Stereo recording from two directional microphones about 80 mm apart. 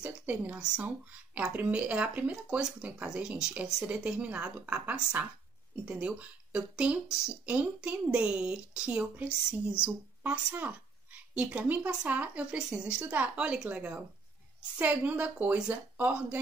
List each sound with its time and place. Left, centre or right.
0.0 s a woman's voice: centre
12.5 s a woman's voice: centre